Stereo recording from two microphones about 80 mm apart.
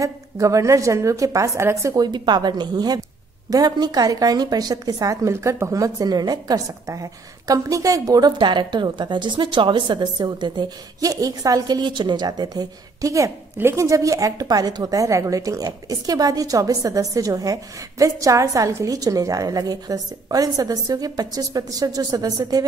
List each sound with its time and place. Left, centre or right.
0.0 s a woman's voice: right
2.0 s a woman's voice: right
13.6 s a woman's voice: right
18.9 s a woman's voice: right